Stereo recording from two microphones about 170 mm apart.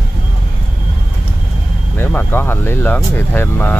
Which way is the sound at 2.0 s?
10° left (ahead or behind).